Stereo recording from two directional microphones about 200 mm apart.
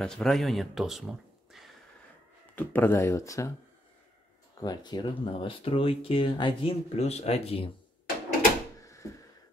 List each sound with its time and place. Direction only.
0.0 s speech: 5° left (ahead or behind)
2.5 s speech: 10° left (ahead or behind)
4.6 s speech: 20° left (ahead or behind)
8.8 s a sound: 15° left (ahead or behind)